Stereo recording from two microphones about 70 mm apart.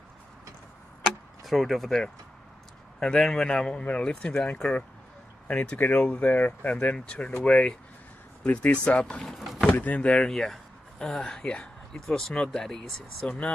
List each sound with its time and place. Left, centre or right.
1.4 s speech: centre
8.8 s speech: centre
9.7 s speech: left